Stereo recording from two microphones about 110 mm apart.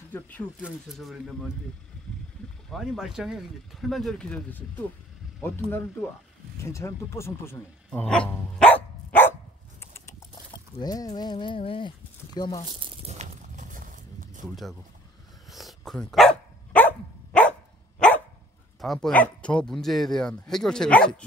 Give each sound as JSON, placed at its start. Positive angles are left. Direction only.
{"t": 0.1, "sound": "speech", "side_deg": 15}
{"t": 0.9, "sound": "speech", "side_deg": 0}
{"t": 2.7, "sound": "speech", "side_deg": 0}
{"t": 7.9, "sound": "dog", "side_deg": 10}
{"t": 9.8, "sound": "a sound", "side_deg": 25}
{"t": 10.8, "sound": "speech", "side_deg": 35}
{"t": 12.4, "sound": "speech", "side_deg": 30}
{"t": 12.6, "sound": "speech", "side_deg": -50}
{"t": 14.5, "sound": "speech", "side_deg": 0}
{"t": 16.7, "sound": "dog", "side_deg": 15}
{"t": 18.8, "sound": "speech", "side_deg": 5}